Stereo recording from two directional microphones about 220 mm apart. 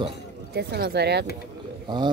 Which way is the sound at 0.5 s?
45° right (ahead or behind).